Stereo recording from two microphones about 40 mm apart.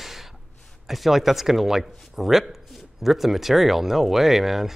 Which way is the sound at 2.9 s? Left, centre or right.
Centre.